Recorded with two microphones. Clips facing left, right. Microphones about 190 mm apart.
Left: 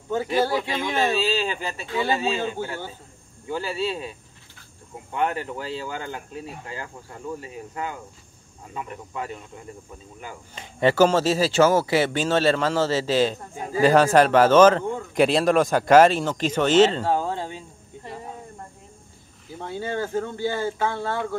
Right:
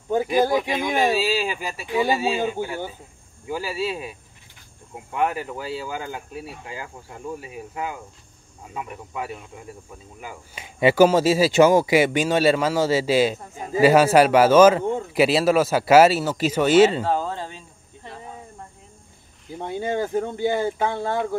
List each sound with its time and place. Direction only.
0.1 s speech: 15° right (ahead or behind)
17.1 s a sound: 10° left (ahead or behind)
19.6 s speech: 20° right (ahead or behind)